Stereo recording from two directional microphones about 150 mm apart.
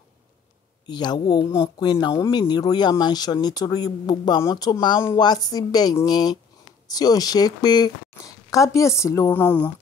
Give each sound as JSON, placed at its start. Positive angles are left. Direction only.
{"t": 0.8, "sound": "speech", "side_deg": 30}